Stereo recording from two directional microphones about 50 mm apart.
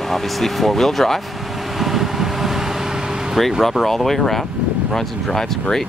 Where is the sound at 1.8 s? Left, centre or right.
Centre.